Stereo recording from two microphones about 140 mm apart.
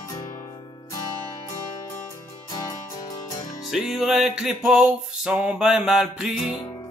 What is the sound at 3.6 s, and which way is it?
Music, centre (ahead or behind).